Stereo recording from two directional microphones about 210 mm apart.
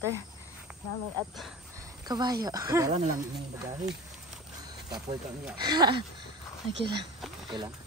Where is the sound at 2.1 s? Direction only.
20° right (ahead or behind).